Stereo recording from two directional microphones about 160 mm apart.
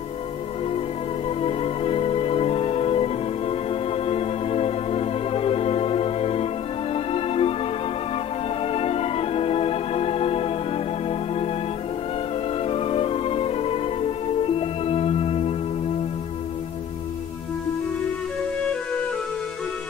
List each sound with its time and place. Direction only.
1.4 s music: 35° left (ahead or behind)
8.7 s organ: 40° left (ahead or behind)
12.6 s music: 40° left (ahead or behind)